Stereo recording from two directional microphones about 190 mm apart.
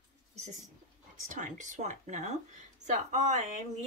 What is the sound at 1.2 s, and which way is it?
A woman's voice, 40° right (ahead or behind).